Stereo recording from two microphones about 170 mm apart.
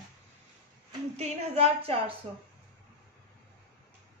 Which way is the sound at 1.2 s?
35° right (ahead or behind).